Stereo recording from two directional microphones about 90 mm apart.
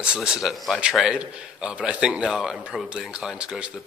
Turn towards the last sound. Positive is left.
turn(degrees=-10)  # may be behind; listen again after turning